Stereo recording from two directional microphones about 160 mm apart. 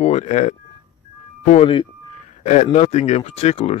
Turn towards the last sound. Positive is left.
turn(degrees=40)  # may be behind; listen again after turning